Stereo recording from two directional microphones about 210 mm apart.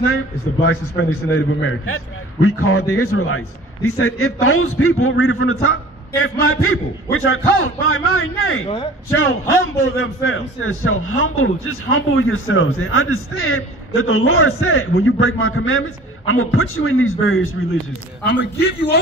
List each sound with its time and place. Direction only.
0.1 s a man's voice: 90° left
2.4 s a man's voice: 90° left
15.0 s a man's voice: 75° left (ahead or behind)
18.4 s a man's voice: 50° left (ahead or behind)